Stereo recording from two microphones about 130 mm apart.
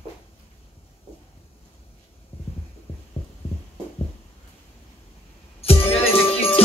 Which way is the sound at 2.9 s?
50° left (ahead or behind).